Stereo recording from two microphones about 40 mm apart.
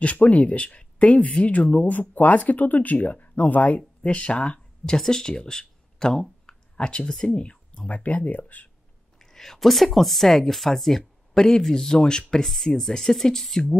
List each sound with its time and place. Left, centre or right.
0.0 s speech: left
4.0 s speech: left
4.9 s speech: centre
6.4 s a sound: left
7.3 s speech: left
8.0 s speech: left
9.2 s speech: centre
12.4 s speech: centre